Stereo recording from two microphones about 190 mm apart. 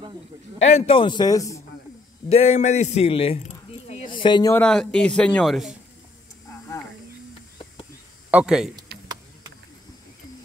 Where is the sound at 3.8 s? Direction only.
35° left (ahead or behind).